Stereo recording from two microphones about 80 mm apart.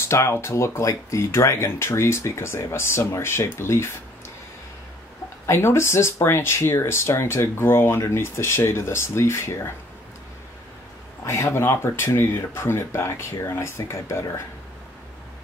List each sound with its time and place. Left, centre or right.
0.0 s speech: left
5.5 s speech: left
11.2 s speech: left